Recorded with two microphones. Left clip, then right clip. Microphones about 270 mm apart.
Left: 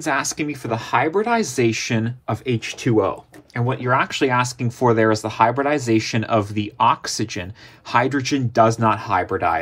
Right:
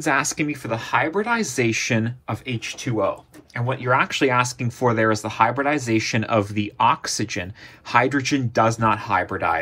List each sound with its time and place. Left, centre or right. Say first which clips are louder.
0.0 s speech: right 1 dB; centre
2.4 s speech: left 8 dB; left
3.5 s speech: left 1 dB; left